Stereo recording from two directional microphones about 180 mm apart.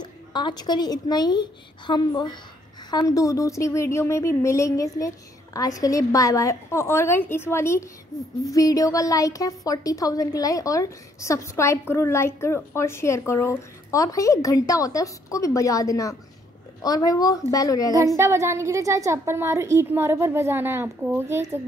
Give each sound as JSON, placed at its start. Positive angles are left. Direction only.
{"t": 0.0, "sound": "a woman's voice", "side_deg": 25}
{"t": 17.9, "sound": "a woman's voice", "side_deg": -15}